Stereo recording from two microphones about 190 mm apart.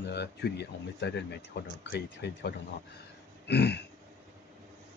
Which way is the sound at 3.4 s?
60° left (ahead or behind).